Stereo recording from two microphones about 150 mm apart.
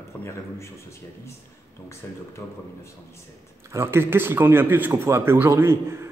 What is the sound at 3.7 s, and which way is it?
A man's voice, 15° right (ahead or behind).